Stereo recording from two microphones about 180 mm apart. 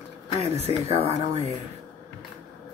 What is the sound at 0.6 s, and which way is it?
Speech, 35° right (ahead or behind).